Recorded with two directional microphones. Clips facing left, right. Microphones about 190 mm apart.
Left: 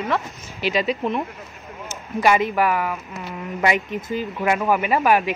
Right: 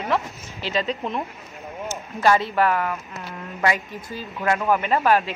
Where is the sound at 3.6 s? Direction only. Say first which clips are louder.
Left 2 dB; 20° left (ahead or behind).